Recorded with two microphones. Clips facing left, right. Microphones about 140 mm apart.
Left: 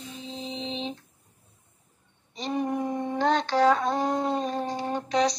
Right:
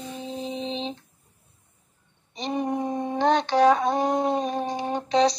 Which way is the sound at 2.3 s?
20° right (ahead or behind).